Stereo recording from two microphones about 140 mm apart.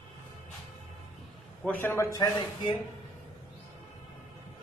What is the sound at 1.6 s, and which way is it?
A man's voice, 15° left (ahead or behind).